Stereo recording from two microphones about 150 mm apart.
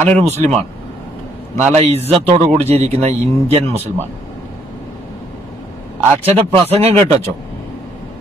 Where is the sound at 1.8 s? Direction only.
45° right (ahead or behind).